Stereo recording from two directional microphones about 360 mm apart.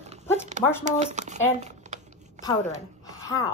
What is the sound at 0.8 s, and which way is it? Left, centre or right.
Speech, centre.